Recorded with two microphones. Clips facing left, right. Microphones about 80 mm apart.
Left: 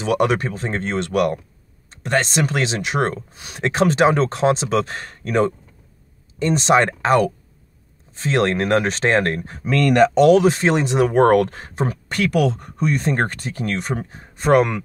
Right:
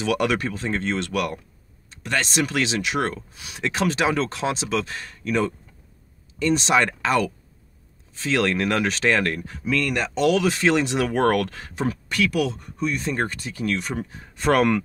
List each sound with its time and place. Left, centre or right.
0.0 s speech: left
9.8 s speech: left
10.1 s speech: left
14.3 s speech: left